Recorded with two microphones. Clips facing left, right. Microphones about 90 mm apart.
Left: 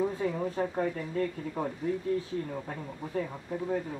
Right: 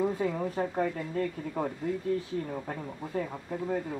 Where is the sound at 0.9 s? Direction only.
10° right (ahead or behind).